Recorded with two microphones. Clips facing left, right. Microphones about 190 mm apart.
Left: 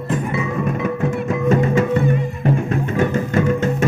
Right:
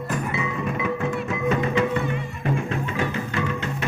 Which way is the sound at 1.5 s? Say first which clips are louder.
Left 6 dB; 45° left (ahead or behind).